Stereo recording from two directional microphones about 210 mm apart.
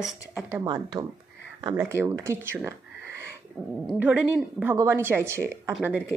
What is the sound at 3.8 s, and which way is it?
A woman's voice, 5° right (ahead or behind).